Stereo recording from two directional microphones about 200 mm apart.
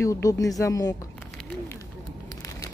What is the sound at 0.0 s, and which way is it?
Speech, 15° left (ahead or behind).